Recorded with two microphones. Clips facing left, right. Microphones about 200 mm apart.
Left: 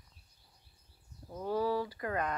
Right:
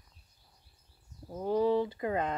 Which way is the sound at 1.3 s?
20° right (ahead or behind).